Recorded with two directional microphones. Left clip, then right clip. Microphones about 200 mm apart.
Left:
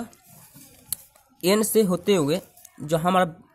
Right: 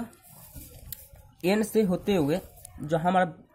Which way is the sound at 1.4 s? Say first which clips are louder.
Left 5 dB; 25° left (ahead or behind).